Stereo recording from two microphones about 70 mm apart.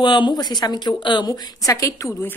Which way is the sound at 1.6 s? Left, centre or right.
Left.